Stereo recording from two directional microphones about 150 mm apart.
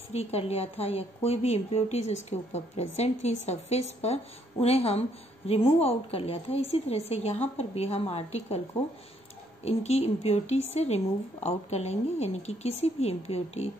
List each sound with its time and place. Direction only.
0.1 s a woman's voice: 45° left (ahead or behind)
9.7 s a woman's voice: 45° left (ahead or behind)